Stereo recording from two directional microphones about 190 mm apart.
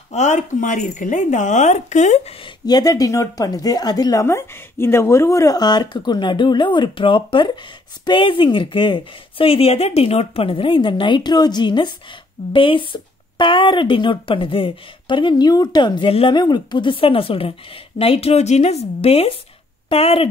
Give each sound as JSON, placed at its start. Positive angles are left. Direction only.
{"t": 0.1, "sound": "speech", "side_deg": 40}
{"t": 2.6, "sound": "speech", "side_deg": 20}